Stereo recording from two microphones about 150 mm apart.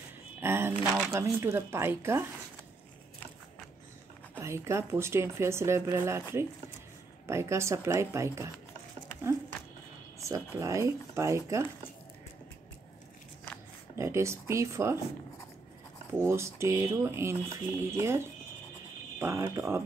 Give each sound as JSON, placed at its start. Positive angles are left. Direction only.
{"t": 0.4, "sound": "a sound", "side_deg": -15}
{"t": 1.2, "sound": "speech", "side_deg": -15}
{"t": 4.4, "sound": "speech", "side_deg": -20}
{"t": 10.2, "sound": "speech", "side_deg": -20}
{"t": 13.9, "sound": "speech", "side_deg": -20}
{"t": 16.1, "sound": "speech", "side_deg": -15}